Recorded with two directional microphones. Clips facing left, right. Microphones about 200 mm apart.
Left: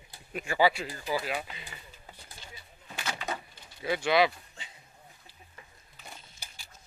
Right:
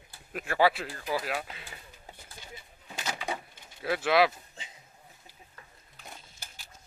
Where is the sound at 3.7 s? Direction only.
Centre (ahead or behind).